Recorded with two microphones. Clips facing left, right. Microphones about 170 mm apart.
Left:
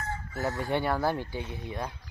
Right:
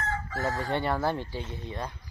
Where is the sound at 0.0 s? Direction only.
90° right.